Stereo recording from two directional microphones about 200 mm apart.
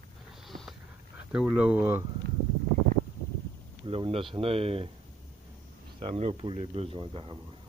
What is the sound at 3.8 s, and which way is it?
Speech, 25° right (ahead or behind).